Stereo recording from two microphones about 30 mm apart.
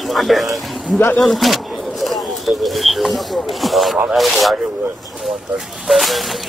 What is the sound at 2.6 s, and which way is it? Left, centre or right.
Speech, centre.